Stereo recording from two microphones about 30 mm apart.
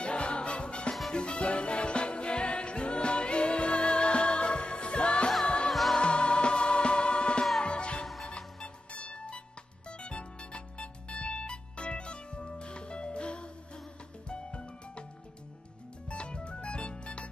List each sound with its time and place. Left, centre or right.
0.0 s music: left
5.7 s music: centre
5.9 s music: left
16.1 s music: left